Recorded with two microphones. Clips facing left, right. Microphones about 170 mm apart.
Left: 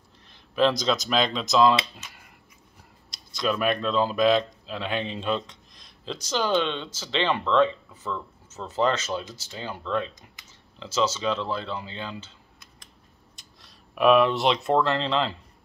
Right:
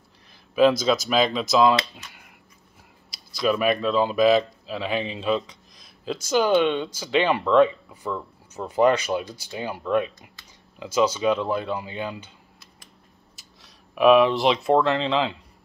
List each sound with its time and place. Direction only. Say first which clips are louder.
0.3 s speech: right 4 dB; 5° right (ahead or behind)
3.3 s speech: right 3 dB; 5° right (ahead or behind)
13.4 s speech: right 1 dB; centre (ahead or behind)